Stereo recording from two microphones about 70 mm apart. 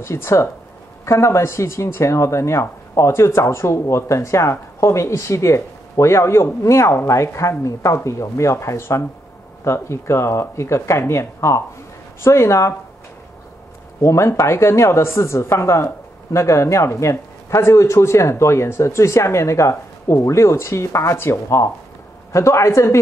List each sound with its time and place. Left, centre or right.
0.0 s speech: left
14.0 s speech: left